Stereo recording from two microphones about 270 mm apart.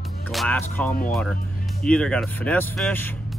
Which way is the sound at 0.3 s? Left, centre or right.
Centre.